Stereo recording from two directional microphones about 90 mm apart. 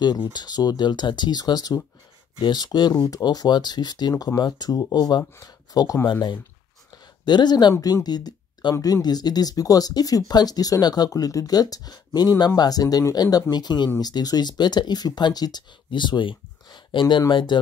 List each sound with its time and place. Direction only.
0.0 s speech: 55° left (ahead or behind)
6.9 s a sound: 55° left (ahead or behind)
7.8 s speech: 45° left (ahead or behind)